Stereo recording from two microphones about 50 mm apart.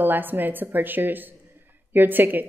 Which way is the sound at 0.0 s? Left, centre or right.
Right.